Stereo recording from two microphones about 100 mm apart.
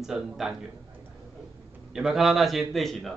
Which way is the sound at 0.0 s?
5° right (ahead or behind).